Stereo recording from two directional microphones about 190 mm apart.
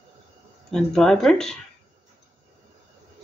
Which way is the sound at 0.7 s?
5° left (ahead or behind).